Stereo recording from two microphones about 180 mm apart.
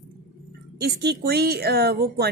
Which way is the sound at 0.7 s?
60° right (ahead or behind).